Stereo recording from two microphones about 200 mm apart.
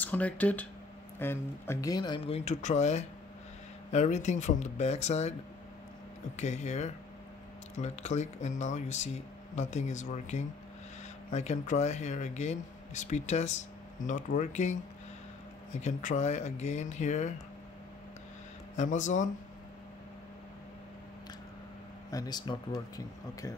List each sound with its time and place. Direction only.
0.0 s speech: 10° left (ahead or behind); by 5.3 s 35° left (ahead or behind)
6.3 s speech: 35° left (ahead or behind)
18.8 s speech: 40° left (ahead or behind)
22.1 s speech: 20° left (ahead or behind)